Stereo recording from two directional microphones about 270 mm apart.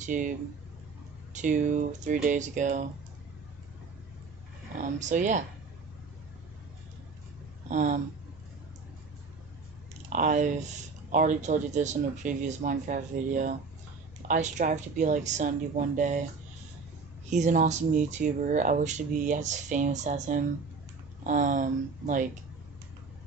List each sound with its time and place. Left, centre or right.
0.0 s speech: right
4.7 s speech: right
7.6 s speech: right
10.0 s speech: right
17.3 s speech: right